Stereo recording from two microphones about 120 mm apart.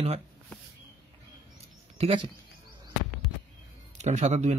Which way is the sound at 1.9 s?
45° right (ahead or behind).